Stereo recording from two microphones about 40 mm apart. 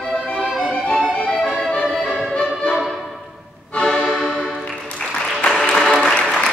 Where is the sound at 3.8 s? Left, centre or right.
Centre.